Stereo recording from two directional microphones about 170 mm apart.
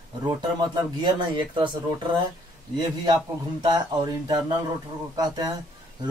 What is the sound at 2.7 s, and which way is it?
Speech, 25° right (ahead or behind).